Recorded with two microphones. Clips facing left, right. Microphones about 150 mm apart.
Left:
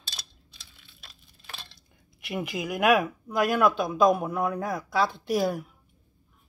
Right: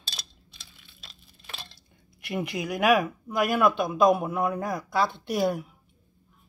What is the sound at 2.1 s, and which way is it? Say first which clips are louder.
Speech: right 1 dB; centre (ahead or behind).